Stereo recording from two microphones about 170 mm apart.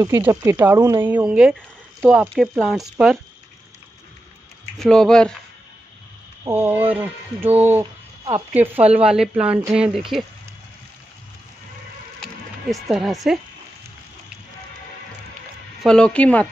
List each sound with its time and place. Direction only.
0.0 s speech: 15° right (ahead or behind)
4.7 s speech: 5° left (ahead or behind)
6.4 s speech: 15° right (ahead or behind)
12.6 s speech: centre (ahead or behind)
15.8 s speech: 5° left (ahead or behind)